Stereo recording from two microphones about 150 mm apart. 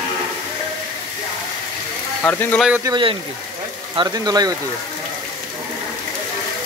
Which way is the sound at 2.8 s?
30° right (ahead or behind).